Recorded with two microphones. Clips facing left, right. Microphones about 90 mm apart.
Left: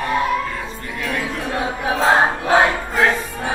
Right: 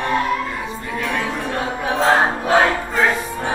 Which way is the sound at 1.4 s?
10° left (ahead or behind).